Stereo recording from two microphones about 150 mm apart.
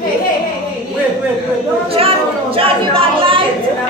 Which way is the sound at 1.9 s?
40° right (ahead or behind).